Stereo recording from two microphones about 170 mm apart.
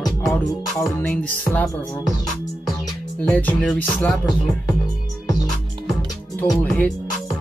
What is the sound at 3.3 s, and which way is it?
Speech, 5° left (ahead or behind).